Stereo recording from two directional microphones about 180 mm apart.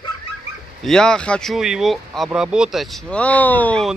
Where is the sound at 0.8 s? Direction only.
5° left (ahead or behind).